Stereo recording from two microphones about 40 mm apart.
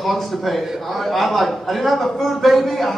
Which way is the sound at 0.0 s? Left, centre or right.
Centre.